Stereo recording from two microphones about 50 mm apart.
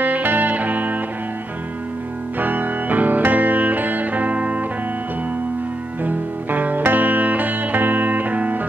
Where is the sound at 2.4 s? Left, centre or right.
Right.